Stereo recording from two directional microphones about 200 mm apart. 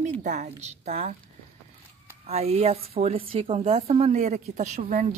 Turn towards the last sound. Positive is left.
turn(degrees=-40)  # may be behind; listen again after turning